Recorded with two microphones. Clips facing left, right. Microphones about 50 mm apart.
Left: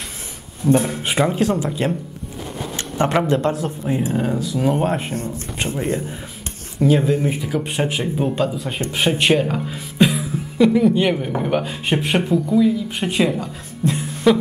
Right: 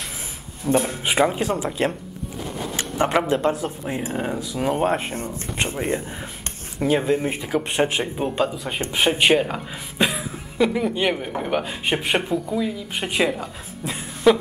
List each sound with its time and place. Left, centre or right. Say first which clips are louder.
0.7 s speech: left 1 dB; centre
3.0 s speech: left 2 dB; centre
5.1 s speech: left 2 dB; right
6.8 s speech: left 3 dB; centre